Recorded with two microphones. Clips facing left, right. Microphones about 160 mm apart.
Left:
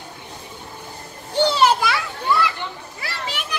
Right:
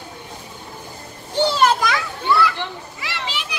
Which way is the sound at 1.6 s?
5° left (ahead or behind).